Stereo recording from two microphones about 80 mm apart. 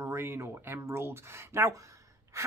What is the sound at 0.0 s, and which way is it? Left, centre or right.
Speech, right.